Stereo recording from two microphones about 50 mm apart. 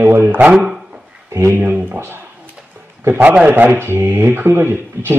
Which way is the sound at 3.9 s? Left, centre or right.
Right.